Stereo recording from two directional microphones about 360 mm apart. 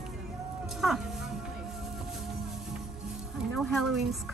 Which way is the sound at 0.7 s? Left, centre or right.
Centre.